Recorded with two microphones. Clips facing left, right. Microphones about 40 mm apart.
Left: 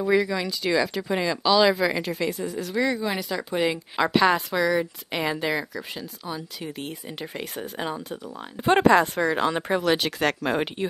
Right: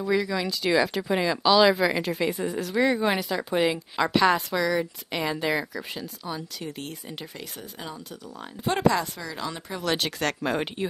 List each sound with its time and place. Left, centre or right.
0.0 s speech: centre
2.2 s speech: centre
3.2 s a woman's voice: centre
5.5 s speech: centre
7.3 s speech: left
9.8 s a woman's voice: centre